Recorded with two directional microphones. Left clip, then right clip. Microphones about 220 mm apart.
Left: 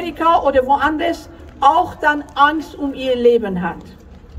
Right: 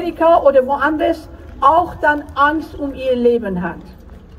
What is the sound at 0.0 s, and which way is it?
A woman's voice, 30° left (ahead or behind).